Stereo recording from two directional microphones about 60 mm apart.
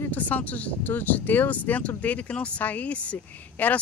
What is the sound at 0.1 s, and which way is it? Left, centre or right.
Speech, left.